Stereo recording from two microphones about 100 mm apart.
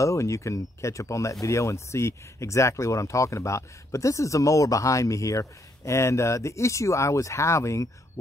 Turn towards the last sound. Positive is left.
turn(degrees=30)  # may be behind; listen again after turning